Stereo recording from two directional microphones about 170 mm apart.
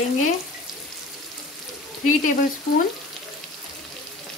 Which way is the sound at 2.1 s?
50° left (ahead or behind).